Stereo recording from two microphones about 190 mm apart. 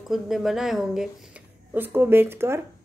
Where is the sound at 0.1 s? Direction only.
Centre (ahead or behind).